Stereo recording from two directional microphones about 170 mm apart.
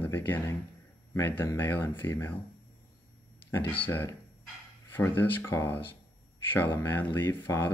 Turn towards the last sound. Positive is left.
turn(degrees=15)  # may be behind; listen again after turning